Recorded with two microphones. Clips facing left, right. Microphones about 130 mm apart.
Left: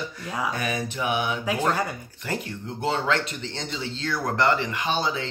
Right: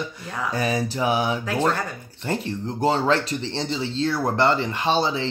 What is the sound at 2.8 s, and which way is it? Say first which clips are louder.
Speech: right 4 dB; 35° right (ahead or behind).